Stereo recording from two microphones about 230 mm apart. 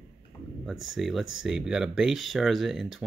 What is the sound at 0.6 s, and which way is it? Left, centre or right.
Speech, centre.